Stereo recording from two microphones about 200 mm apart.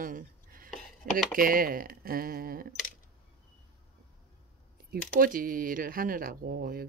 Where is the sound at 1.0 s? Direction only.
50° right (ahead or behind).